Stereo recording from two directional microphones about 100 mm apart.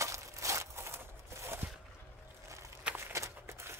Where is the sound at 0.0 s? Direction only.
30° right (ahead or behind).